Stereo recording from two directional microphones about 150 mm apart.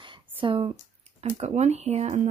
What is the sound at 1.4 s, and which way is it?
Speech, 50° right (ahead or behind).